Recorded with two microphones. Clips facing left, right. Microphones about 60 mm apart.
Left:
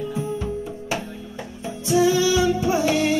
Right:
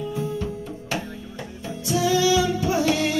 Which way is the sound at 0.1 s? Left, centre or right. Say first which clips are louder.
Left 1 dB; centre.